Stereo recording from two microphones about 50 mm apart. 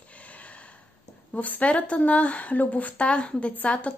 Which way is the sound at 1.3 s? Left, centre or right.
Left.